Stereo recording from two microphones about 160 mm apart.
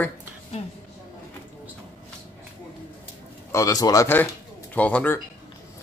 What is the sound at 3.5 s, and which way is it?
A man's voice, 20° left (ahead or behind).